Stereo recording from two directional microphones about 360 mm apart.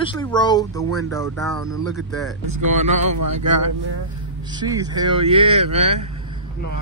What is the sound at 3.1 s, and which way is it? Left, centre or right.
Speech, right.